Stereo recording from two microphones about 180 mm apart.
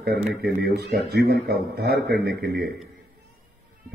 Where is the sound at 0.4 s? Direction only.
65° right (ahead or behind).